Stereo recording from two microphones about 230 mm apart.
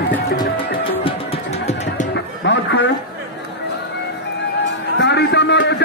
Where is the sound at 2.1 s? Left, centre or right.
Left.